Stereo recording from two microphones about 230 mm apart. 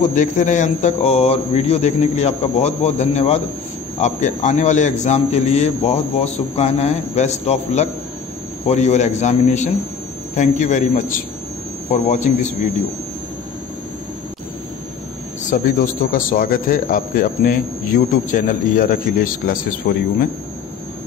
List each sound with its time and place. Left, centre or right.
0.1 s speech: left
15.5 s speech: left